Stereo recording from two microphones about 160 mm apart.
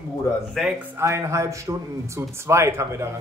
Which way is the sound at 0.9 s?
20° right (ahead or behind).